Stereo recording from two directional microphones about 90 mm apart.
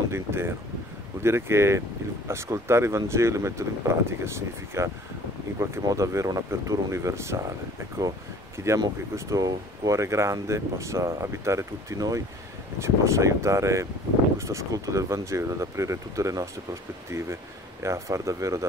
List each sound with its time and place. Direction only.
0.1 s speech: 25° right (ahead or behind)
8.5 s speech: 35° right (ahead or behind)
17.8 s speech: 35° right (ahead or behind)